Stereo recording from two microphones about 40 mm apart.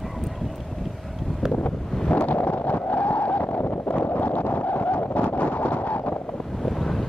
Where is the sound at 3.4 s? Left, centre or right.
Left.